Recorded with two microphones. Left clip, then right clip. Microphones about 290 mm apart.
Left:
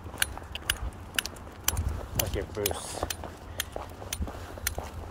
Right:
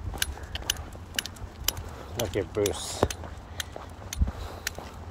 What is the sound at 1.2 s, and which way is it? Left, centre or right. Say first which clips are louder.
Keys jangling: left 1 dB; centre.